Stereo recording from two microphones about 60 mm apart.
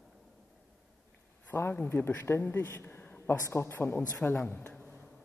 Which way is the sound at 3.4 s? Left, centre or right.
Left.